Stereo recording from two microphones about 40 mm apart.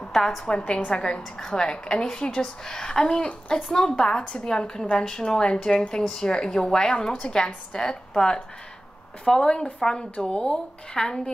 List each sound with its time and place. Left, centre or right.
0.0 s a sound: centre
0.5 s a woman's voice: left
1.0 s a woman's voice: centre